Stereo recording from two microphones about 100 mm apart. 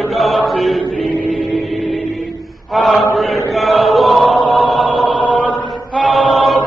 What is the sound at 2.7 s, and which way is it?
Chant, centre (ahead or behind).